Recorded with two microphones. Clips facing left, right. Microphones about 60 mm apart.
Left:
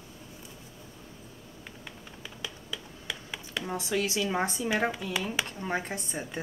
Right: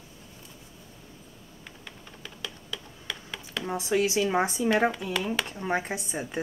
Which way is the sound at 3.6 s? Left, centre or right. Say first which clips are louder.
Right 5 dB; centre.